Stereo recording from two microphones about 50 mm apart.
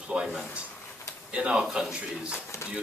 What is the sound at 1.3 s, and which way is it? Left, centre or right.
Speech, centre.